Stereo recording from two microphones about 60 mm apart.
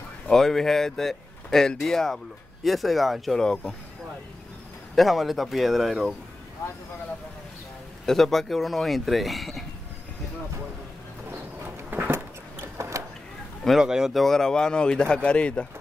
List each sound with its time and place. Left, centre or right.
0.3 s speech: centre
4.9 s speech: centre
8.0 s speech: centre
11.9 s vehicle: right
13.7 s speech: centre
14.2 s speech: centre